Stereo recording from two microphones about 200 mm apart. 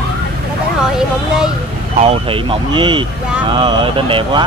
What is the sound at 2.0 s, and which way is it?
Speech, 30° right (ahead or behind).